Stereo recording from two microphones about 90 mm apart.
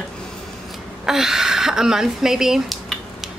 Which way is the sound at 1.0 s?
5° right (ahead or behind).